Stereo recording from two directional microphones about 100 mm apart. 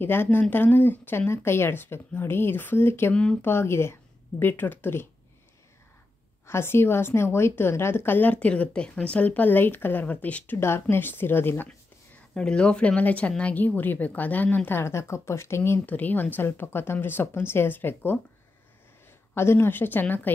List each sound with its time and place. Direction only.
0.0 s a woman's voice: 20° left (ahead or behind)
6.4 s a woman's voice: 25° left (ahead or behind)
12.4 s a woman's voice: 10° left (ahead or behind)
19.3 s a woman's voice: 25° left (ahead or behind)